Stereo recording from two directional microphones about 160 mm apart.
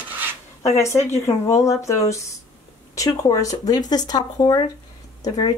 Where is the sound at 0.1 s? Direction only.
10° right (ahead or behind).